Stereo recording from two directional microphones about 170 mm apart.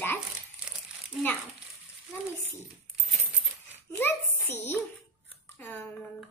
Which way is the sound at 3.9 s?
15° left (ahead or behind).